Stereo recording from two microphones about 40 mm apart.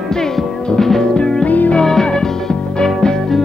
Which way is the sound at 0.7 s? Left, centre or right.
Centre.